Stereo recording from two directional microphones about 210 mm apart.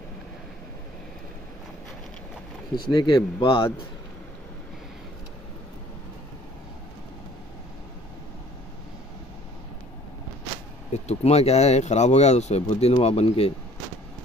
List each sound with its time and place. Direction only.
2.7 s speech: 20° left (ahead or behind)
10.9 s speech: 30° left (ahead or behind)